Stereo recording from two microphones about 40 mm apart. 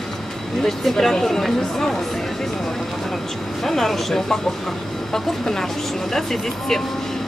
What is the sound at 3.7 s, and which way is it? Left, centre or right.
Speech, centre.